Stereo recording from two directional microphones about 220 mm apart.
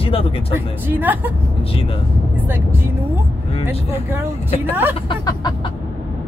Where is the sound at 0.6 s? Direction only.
10° right (ahead or behind).